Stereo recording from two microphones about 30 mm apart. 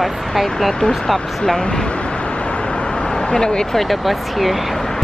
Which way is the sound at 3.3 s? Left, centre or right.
Centre.